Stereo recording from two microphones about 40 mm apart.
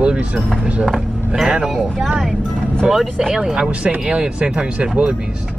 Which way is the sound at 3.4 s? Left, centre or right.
Centre.